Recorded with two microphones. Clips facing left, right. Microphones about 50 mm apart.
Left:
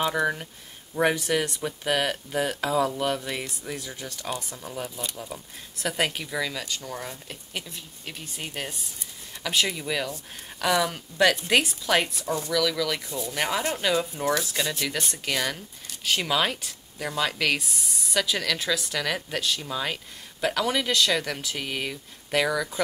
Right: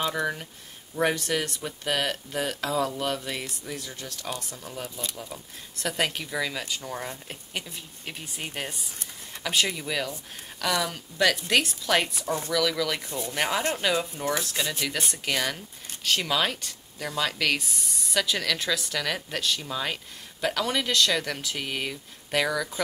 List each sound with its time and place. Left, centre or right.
0.0 s speech: centre
7.5 s speech: centre
12.3 s speech: right
12.5 s speech: centre